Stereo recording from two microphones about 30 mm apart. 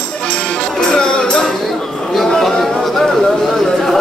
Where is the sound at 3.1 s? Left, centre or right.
Centre.